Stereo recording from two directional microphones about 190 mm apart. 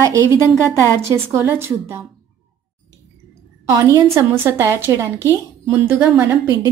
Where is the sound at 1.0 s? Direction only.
15° right (ahead or behind).